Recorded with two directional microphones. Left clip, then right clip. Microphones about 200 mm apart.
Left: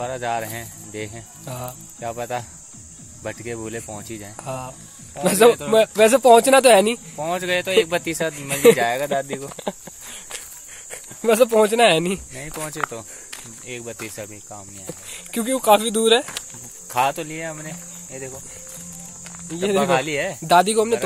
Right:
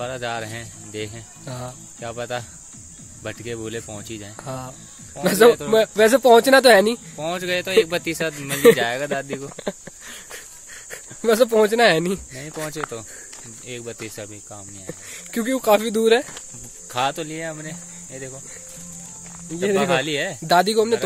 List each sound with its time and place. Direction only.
0.0 s speech: 15° right (ahead or behind)
9.4 s snake: 20° right (ahead or behind)
10.9 s speech: 10° right (ahead or behind)
19.6 s speech: 10° right (ahead or behind)